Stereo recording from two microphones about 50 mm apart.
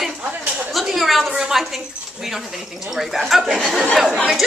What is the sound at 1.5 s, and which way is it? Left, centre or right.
Speech, centre.